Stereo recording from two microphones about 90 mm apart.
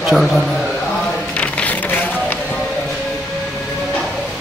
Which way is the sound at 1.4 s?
15° left (ahead or behind).